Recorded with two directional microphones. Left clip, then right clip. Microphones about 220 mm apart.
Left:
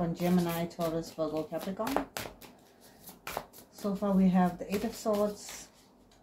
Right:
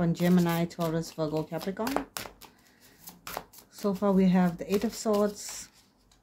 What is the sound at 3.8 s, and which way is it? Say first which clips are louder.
Speech: right 4 dB; 50° right (ahead or behind).